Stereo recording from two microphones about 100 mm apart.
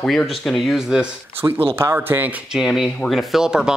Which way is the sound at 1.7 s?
20° right (ahead or behind).